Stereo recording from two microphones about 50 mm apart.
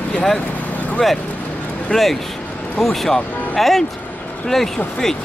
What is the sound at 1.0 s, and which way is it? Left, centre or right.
Speech, centre.